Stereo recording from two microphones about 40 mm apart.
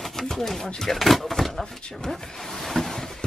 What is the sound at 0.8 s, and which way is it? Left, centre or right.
Speech, centre.